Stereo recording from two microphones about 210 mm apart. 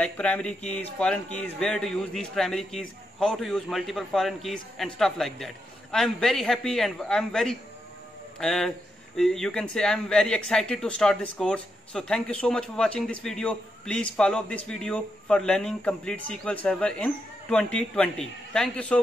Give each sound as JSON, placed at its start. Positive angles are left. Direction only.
{"t": 0.0, "sound": "a man's voice", "side_deg": 5}